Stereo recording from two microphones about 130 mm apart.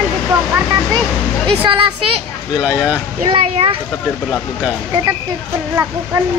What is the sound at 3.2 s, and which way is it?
Speech, 50° right (ahead or behind).